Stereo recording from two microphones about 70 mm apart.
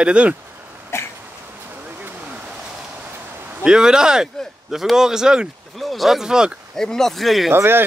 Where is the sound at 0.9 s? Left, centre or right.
Left.